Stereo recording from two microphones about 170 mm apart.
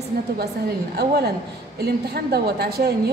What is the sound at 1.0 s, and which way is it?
A woman's voice, 70° right (ahead or behind).